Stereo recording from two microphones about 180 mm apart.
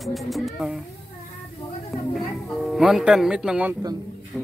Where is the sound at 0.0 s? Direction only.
Centre (ahead or behind).